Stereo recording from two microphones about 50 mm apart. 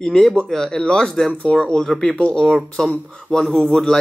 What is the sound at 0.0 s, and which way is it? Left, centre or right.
Speech, centre.